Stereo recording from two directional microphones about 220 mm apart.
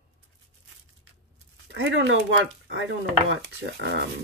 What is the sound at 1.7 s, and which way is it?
Speech, 55° right (ahead or behind).